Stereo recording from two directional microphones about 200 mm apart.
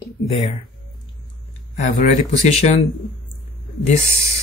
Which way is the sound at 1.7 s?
40° left (ahead or behind).